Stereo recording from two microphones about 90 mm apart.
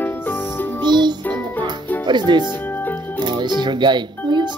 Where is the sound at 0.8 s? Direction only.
55° right (ahead or behind).